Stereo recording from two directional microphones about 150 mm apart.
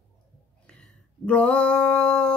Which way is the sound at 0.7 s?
5° left (ahead or behind).